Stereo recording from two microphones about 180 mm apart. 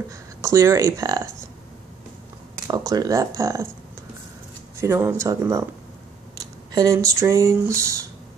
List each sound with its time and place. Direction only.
0.1 s speech: 15° right (ahead or behind)
2.5 s speech: 20° right (ahead or behind)
4.7 s speech: 15° right (ahead or behind)
6.7 s speech: 20° right (ahead or behind)